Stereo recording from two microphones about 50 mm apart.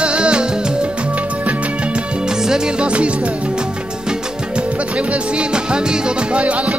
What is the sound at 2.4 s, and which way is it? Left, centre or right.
Music, centre.